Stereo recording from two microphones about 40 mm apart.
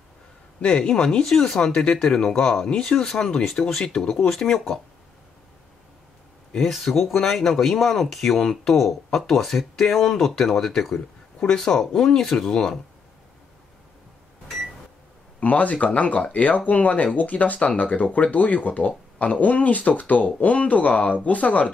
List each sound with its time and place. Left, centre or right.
0.6 s speech: left
1.2 s speech: centre
6.5 s speech: centre
8.7 s speech: centre
15.4 s speech: left